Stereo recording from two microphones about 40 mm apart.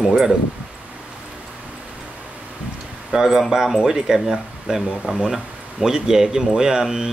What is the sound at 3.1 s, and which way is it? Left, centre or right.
Speech, centre.